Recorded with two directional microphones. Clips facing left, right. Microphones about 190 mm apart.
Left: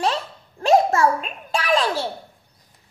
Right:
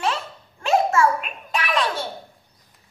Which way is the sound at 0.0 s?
35° left (ahead or behind).